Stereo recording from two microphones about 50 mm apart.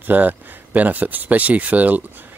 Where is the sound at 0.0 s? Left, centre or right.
Right.